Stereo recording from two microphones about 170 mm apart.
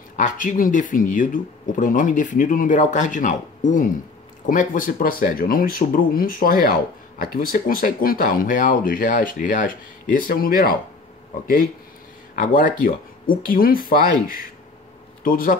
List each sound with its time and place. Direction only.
0.1 s speech: 50° left (ahead or behind)
12.4 s speech: 55° left (ahead or behind)